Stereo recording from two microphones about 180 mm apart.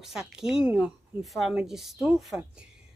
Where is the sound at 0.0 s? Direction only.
5° right (ahead or behind).